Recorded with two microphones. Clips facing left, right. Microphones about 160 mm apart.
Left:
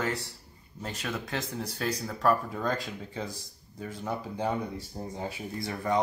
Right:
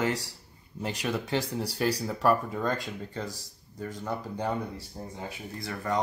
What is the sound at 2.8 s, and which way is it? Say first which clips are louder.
Speech: right 1 dB; 10° left (ahead or behind).